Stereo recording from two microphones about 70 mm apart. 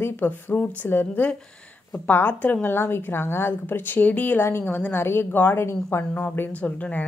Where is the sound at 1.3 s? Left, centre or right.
Centre.